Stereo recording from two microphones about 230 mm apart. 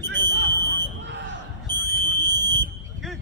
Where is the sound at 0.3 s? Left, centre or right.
Right.